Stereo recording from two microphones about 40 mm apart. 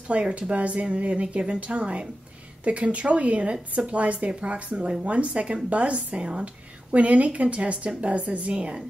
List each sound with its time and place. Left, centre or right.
0.1 s a woman's voice: right